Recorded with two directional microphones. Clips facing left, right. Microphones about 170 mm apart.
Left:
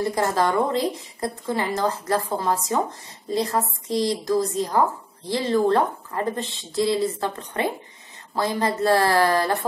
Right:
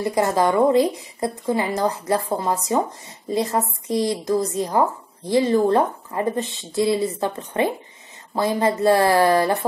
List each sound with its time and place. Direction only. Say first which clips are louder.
0.0 s a woman's voice: right 3 dB; 15° right (ahead or behind)